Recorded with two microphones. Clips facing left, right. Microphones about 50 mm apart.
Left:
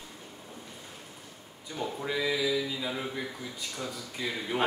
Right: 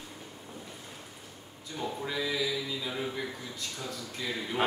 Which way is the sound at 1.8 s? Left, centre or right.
Centre.